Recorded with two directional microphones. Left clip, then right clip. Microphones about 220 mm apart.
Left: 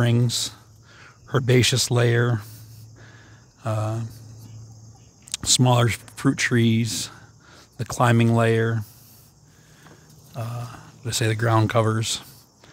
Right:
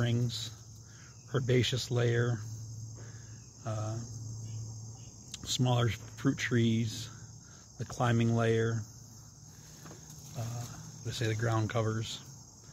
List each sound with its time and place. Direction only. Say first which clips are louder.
0.0 s speech: left 12 dB; 45° left (ahead or behind)
3.6 s speech: left 12 dB; 45° left (ahead or behind)
5.3 s speech: left 13 dB; 45° left (ahead or behind)
10.3 s speech: left 10 dB; 50° left (ahead or behind)